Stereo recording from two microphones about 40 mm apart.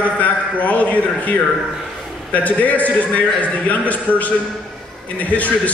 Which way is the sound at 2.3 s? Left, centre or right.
Left.